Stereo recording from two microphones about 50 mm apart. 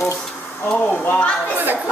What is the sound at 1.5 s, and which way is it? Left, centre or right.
Speech, right.